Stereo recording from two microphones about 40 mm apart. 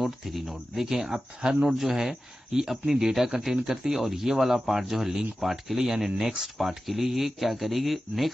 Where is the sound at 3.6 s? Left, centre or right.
Centre.